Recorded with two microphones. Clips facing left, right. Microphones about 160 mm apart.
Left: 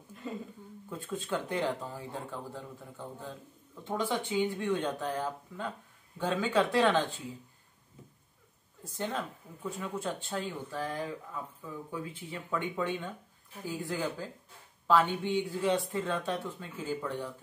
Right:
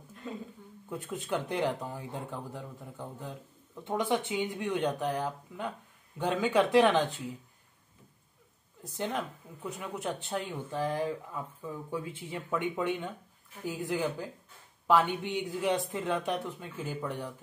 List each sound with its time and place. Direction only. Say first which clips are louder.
0.1 s a sound: left 1 dB; centre (ahead or behind)
0.8 s speech: right 1 dB; 20° right (ahead or behind)
8.8 s speech: right 1 dB; 15° right (ahead or behind)